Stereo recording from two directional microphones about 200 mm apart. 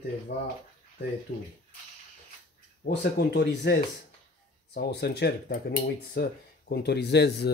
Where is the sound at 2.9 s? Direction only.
55° left (ahead or behind).